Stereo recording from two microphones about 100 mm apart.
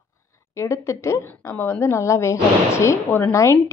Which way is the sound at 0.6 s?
30° left (ahead or behind).